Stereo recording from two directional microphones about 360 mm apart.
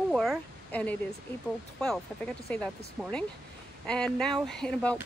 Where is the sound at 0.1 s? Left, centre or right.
Centre.